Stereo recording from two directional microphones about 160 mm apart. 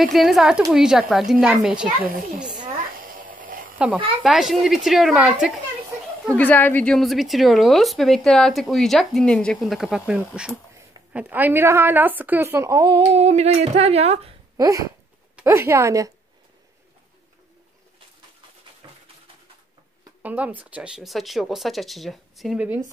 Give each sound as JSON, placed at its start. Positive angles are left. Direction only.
{"t": 0.1, "sound": "speech", "side_deg": 0}
{"t": 2.6, "sound": "a sound", "side_deg": -60}
{"t": 3.7, "sound": "speech", "side_deg": -10}
{"t": 6.3, "sound": "speech", "side_deg": 10}
{"t": 13.0, "sound": "speech", "side_deg": -40}
{"t": 14.6, "sound": "speech", "side_deg": -20}
{"t": 18.8, "sound": "a sound", "side_deg": -25}
{"t": 20.2, "sound": "speech", "side_deg": -10}